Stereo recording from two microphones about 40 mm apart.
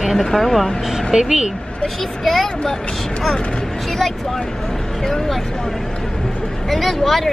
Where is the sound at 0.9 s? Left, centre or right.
Centre.